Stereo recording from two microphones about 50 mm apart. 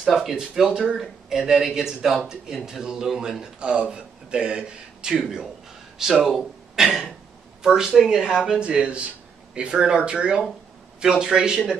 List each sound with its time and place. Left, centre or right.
0.0 s a man's voice: centre